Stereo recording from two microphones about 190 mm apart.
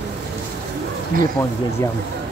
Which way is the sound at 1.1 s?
45° right (ahead or behind).